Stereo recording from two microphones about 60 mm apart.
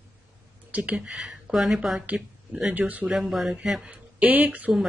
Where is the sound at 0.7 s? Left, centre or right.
Centre.